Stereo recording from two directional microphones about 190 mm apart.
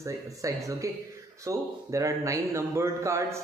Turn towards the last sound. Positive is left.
turn(degrees=-15)  # may be behind; listen again after turning